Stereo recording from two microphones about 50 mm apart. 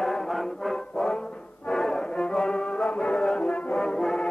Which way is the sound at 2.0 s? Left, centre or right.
Centre.